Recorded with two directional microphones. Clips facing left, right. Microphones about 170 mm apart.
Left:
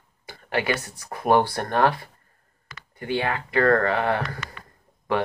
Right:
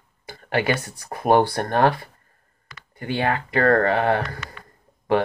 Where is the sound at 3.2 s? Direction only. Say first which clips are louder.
Right 2 dB; 35° right (ahead or behind).